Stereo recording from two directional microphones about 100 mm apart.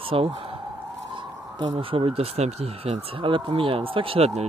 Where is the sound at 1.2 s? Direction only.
55° right (ahead or behind).